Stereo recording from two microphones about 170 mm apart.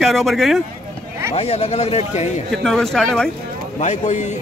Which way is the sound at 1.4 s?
40° left (ahead or behind).